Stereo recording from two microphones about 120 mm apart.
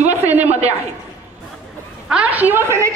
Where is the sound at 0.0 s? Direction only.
65° right (ahead or behind).